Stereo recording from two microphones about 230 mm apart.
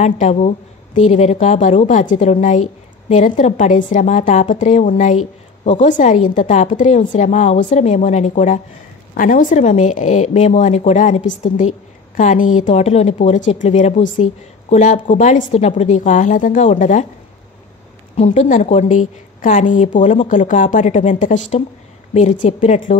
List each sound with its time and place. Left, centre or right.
0.0 s a woman's voice: left
18.1 s a woman's voice: left